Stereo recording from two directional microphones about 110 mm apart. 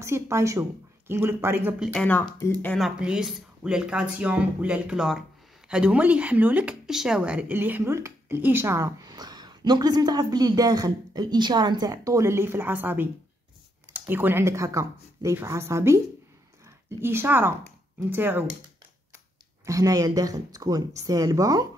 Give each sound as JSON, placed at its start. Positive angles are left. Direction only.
{"t": 0.0, "sound": "speech", "side_deg": -25}
{"t": 2.0, "sound": "speech", "side_deg": 10}
{"t": 2.8, "sound": "speech", "side_deg": -5}
{"t": 19.6, "sound": "speech", "side_deg": -30}